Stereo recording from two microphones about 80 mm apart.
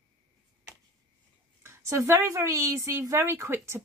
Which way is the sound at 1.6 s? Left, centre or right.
Right.